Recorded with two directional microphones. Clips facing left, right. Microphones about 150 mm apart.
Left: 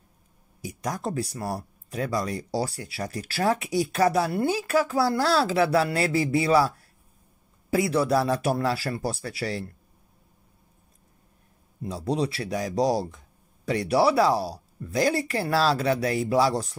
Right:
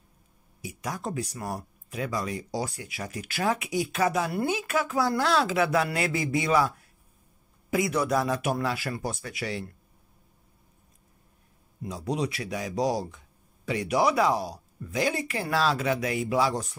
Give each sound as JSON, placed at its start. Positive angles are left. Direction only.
{"t": 0.6, "sound": "speech", "side_deg": 35}
{"t": 11.8, "sound": "speech", "side_deg": 30}